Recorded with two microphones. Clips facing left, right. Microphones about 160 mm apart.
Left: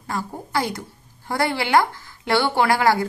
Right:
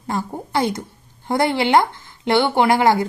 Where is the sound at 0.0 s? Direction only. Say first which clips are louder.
Right 4 dB; 25° right (ahead or behind).